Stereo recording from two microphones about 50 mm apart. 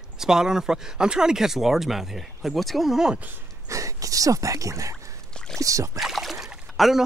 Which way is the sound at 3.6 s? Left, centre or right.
Right.